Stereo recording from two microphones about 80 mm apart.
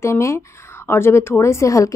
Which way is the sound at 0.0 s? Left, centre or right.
Left.